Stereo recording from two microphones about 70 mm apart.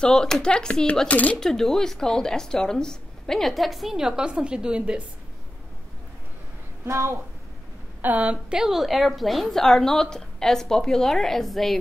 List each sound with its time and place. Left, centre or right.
0.0 s speech: centre
1.4 s a woman's voice: centre
6.9 s a woman's voice: right
8.0 s a woman's voice: right; by 11.8 s centre